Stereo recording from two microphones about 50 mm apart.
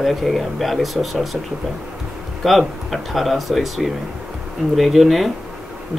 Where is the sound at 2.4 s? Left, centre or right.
Centre.